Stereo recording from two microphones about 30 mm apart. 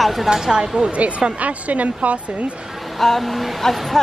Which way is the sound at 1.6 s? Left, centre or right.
Right.